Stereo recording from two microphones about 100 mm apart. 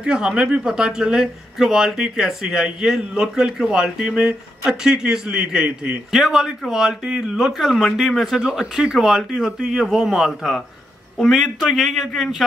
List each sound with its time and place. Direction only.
0.0 s speech: 10° right (ahead or behind)